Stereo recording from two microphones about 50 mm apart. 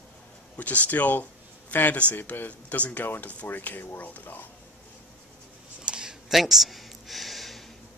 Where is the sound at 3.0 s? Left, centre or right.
Left.